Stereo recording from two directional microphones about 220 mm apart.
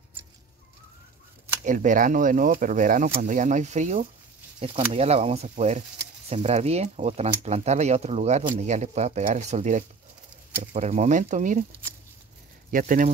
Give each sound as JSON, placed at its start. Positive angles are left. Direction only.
{"t": 1.6, "sound": "speech", "side_deg": -35}
{"t": 12.7, "sound": "speech", "side_deg": -35}